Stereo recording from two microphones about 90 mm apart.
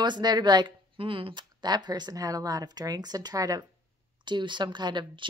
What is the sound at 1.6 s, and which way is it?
Speech, 50° right (ahead or behind).